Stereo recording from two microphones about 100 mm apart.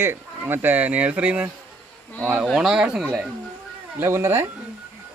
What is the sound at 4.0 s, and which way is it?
Speech, 25° right (ahead or behind).